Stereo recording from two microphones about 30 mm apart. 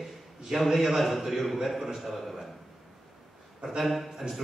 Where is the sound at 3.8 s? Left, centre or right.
Centre.